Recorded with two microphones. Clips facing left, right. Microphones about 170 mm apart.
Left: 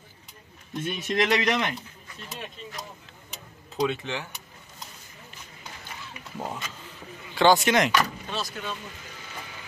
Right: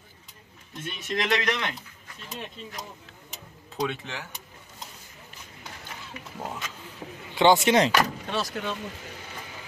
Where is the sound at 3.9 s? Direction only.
5° right (ahead or behind).